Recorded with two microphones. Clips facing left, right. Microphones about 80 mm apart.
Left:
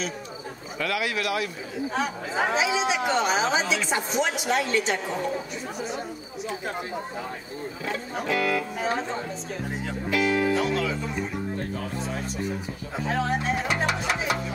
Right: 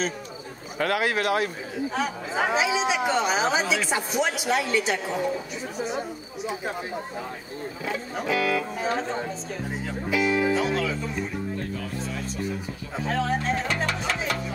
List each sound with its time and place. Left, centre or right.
0.7 s speech: right
1.9 s a woman's voice: centre
7.8 s speech: centre
11.5 s music: left
12.9 s speech: centre